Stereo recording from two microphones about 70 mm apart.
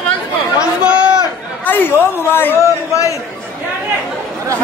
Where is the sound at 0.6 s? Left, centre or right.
Centre.